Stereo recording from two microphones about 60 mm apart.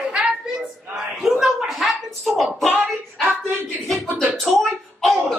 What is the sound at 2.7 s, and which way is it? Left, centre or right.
Speech, right.